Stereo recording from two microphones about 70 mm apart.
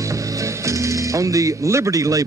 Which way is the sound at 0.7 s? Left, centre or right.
Right.